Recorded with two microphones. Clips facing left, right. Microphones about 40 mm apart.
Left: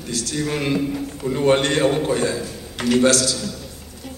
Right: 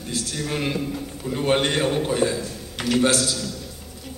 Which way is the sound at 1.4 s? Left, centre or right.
Centre.